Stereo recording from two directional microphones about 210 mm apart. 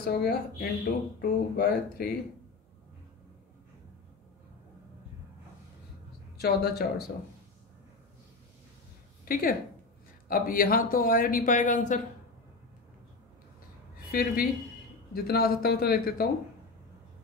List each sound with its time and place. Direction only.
0.0 s speech: 45° left (ahead or behind)
6.3 s speech: 50° left (ahead or behind)
9.2 s a woman's voice: 45° left (ahead or behind)
14.1 s speech: 45° left (ahead or behind)